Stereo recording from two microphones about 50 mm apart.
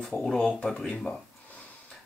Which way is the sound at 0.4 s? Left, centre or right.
Centre.